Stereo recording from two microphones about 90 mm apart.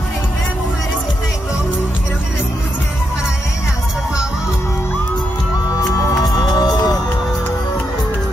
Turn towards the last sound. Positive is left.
turn(degrees=50)  # may be behind; listen again after turning